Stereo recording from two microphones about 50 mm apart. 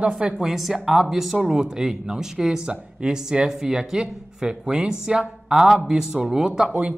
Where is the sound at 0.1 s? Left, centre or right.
Centre.